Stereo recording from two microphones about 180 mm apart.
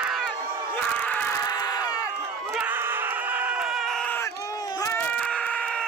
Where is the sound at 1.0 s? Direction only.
10° left (ahead or behind).